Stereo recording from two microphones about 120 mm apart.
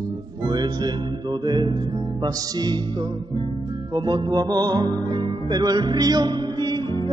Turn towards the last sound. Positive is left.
turn(degrees=-35)  # may be behind; listen again after turning